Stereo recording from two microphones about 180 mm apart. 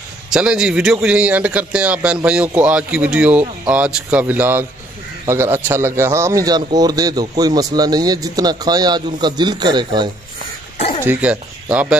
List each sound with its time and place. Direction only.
0.3 s a man's voice: 5° right (ahead or behind); by 10.0 s 25° right (ahead or behind)
11.1 s a man's voice: 5° right (ahead or behind)